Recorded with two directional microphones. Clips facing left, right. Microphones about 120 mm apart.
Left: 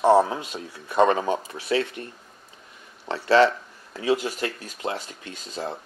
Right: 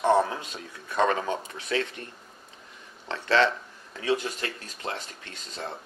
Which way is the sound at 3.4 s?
5° left (ahead or behind).